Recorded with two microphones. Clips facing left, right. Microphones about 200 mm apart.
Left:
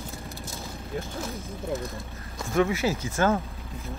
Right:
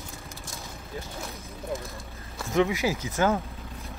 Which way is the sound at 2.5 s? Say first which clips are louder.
Even; 15° right (ahead or behind).